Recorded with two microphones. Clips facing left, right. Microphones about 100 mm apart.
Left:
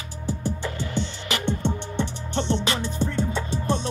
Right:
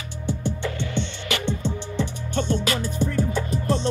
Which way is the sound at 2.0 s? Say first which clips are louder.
Right 2 dB; 30° left (ahead or behind).